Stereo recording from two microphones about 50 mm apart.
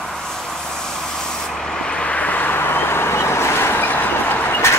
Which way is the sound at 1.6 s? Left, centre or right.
Centre.